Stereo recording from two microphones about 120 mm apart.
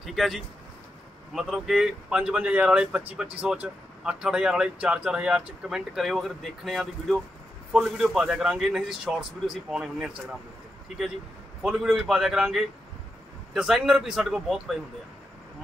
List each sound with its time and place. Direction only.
0.0 s a man's voice: centre (ahead or behind)
11.6 s a man's voice: 5° right (ahead or behind)